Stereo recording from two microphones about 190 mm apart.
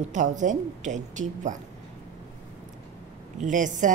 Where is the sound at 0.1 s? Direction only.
40° right (ahead or behind).